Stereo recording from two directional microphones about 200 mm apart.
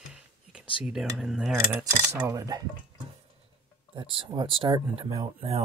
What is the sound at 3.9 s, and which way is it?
Speech, 25° right (ahead or behind).